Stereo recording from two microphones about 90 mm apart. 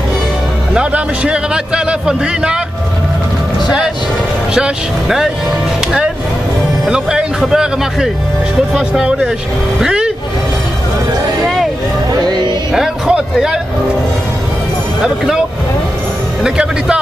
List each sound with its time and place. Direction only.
0.7 s a man's voice: 10° right (ahead or behind)
4.6 s a man's voice: 5° right (ahead or behind)
6.9 s music: 10° right (ahead or behind)
8.7 s a man's voice: 10° right (ahead or behind)
12.1 s music: 50° right (ahead or behind)
12.7 s a sound: 5° right (ahead or behind)
16.4 s speech: 10° right (ahead or behind)